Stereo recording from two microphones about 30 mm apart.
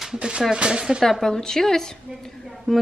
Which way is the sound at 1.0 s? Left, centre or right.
Centre.